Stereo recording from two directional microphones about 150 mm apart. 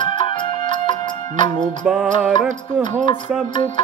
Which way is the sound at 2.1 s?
55° right (ahead or behind).